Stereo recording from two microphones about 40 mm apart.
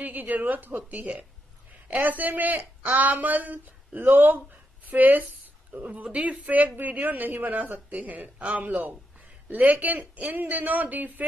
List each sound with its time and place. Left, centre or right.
0.0 s speech: right
6.0 s speech: right